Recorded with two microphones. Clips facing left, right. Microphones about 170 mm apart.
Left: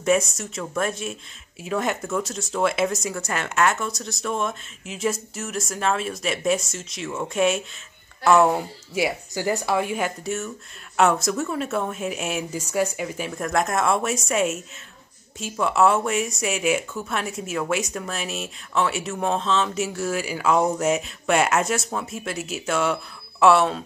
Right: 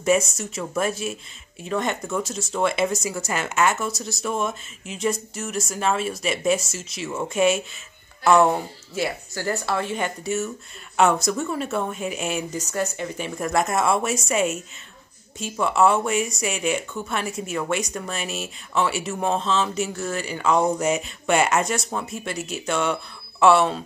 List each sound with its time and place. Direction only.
0.0 s speech: centre (ahead or behind)